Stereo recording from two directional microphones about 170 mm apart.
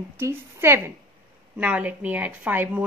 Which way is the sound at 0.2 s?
15° right (ahead or behind).